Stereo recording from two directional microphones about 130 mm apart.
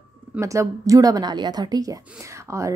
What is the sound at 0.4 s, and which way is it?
Speech, 25° right (ahead or behind).